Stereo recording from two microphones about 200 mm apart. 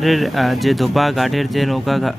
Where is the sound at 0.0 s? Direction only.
Centre (ahead or behind).